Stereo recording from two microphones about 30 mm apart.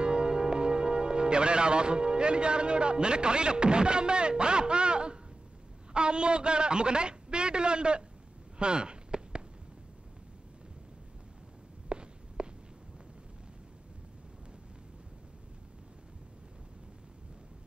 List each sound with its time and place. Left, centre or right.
0.0 s a man's voice: right
8.5 s a sound: right
11.9 s walk: right